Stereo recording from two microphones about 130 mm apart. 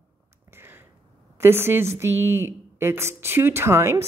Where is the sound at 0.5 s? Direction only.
15° right (ahead or behind).